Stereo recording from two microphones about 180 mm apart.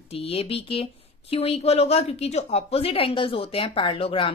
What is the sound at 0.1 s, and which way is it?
Speech, 35° left (ahead or behind).